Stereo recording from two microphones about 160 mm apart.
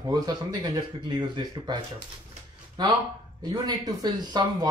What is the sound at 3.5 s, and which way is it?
Speech, 25° right (ahead or behind).